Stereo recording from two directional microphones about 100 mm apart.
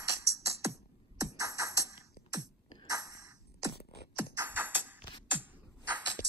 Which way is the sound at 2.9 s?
35° right (ahead or behind).